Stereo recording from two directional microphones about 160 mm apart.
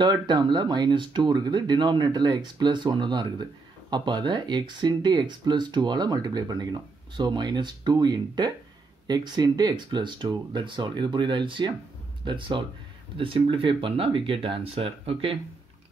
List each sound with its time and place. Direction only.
0.0 s speech: 30° right (ahead or behind)